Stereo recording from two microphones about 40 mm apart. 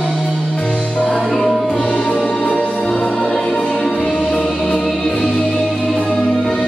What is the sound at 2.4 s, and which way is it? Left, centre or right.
Music, left.